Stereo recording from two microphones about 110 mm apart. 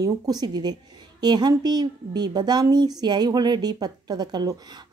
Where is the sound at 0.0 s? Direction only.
40° right (ahead or behind).